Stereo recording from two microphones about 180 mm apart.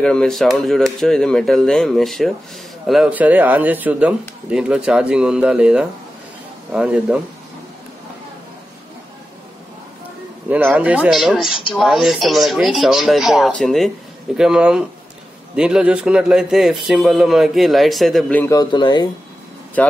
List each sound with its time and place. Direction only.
0.0 s a man's voice: 5° left (ahead or behind)
10.5 s speech: 10° right (ahead or behind)
18.4 s speech: 20° left (ahead or behind)
19.8 s speech: 10° left (ahead or behind)